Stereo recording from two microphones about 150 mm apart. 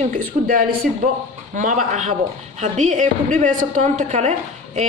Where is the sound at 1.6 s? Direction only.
55° right (ahead or behind).